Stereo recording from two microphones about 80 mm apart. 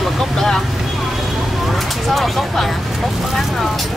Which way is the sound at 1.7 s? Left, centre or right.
Centre.